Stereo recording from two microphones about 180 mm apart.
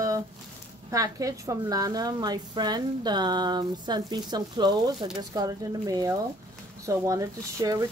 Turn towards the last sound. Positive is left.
turn(degrees=-20)  # may be behind; listen again after turning